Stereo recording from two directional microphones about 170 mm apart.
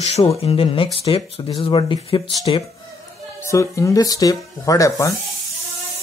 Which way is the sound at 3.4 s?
15° left (ahead or behind).